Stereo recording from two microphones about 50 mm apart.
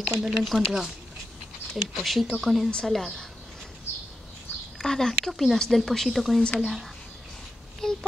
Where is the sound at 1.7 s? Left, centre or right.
Centre.